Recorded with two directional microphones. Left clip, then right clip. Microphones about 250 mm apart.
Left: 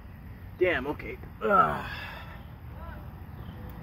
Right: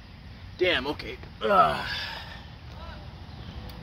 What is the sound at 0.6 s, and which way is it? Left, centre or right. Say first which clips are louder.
Speech: right 2 dB; right.